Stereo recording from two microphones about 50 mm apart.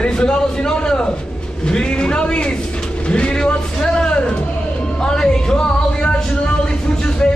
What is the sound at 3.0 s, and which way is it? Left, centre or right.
Music, left.